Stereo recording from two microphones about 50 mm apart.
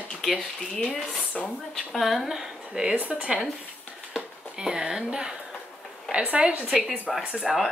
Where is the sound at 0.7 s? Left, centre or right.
Left.